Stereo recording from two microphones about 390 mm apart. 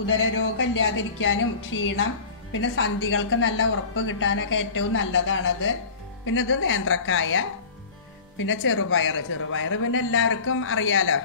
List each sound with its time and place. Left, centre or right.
0.0 s a woman's voice: left
1.7 s speech: left
2.5 s a woman's voice: left
8.5 s a man's voice: left